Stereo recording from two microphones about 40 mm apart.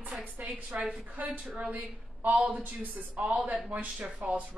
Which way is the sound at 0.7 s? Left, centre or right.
Right.